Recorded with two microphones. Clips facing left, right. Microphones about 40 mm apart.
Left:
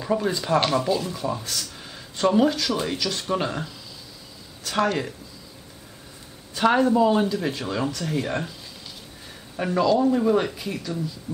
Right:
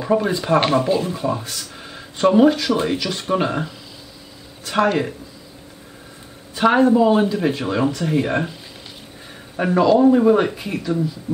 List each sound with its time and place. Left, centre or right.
0.0 s speech: centre
6.5 s speech: centre
9.6 s speech: right